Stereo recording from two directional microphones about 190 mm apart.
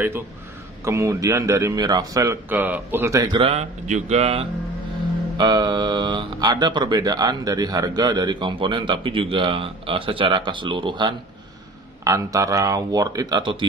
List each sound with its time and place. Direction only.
0.8 s speech: 15° right (ahead or behind)
3.3 s music: 35° right (ahead or behind)
5.4 s speech: 20° right (ahead or behind)